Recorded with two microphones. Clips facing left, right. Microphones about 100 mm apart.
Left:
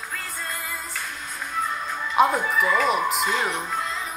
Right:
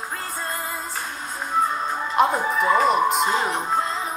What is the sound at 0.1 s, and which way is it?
Music, 30° right (ahead or behind).